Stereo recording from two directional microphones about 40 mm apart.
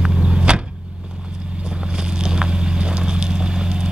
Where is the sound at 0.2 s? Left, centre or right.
Right.